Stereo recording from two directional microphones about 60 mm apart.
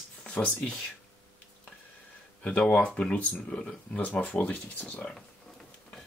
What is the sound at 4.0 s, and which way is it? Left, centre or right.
Speech, left.